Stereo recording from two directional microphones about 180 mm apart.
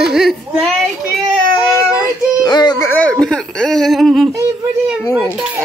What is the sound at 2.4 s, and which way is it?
Music, 25° left (ahead or behind).